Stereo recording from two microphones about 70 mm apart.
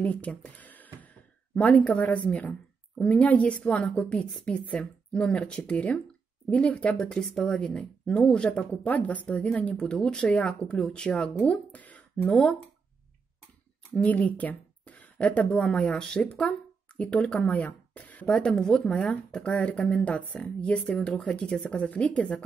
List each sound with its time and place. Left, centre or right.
0.0 s speech: left
11.7 s a sound: left
13.9 s speech: centre
17.5 s speech: left
18.3 s speech: centre